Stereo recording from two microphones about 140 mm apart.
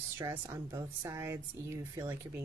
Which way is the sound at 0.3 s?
20° right (ahead or behind).